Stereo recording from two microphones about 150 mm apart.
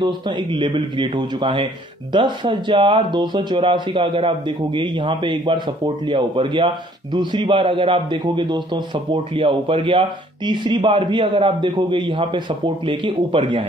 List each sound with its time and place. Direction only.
0.0 s speech: 30° right (ahead or behind)